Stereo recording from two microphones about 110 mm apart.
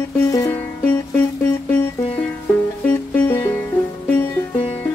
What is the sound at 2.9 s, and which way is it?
Music, 20° left (ahead or behind).